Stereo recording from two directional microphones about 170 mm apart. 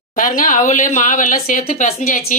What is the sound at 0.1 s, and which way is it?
Speech, 50° left (ahead or behind).